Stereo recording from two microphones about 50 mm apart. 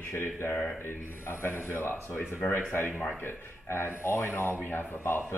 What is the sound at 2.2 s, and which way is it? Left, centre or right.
Speech, left.